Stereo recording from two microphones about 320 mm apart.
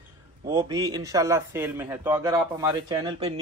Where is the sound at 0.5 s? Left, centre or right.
Centre.